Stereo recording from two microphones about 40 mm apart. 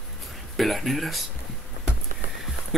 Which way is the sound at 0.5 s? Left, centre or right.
Centre.